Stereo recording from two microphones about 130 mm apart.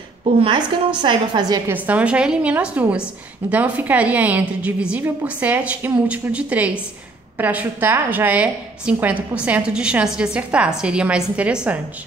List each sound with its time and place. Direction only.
0.2 s a woman's voice: 40° right (ahead or behind)
1.7 s a woman's voice: 10° right (ahead or behind)